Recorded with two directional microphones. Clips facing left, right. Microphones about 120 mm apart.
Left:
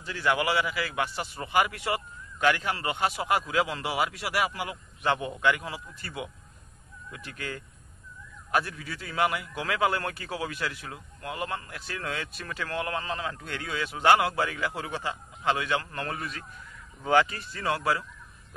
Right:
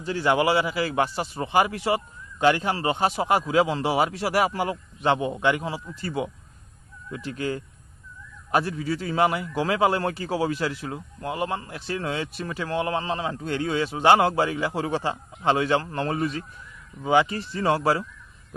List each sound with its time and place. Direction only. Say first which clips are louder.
0.0 s speech: right 5 dB; 30° right (ahead or behind)
5.0 s speech: right 4 dB; 25° right (ahead or behind)
17.0 s speech: right 3 dB; 10° right (ahead or behind)
17.3 s speech: right 7 dB; 30° right (ahead or behind)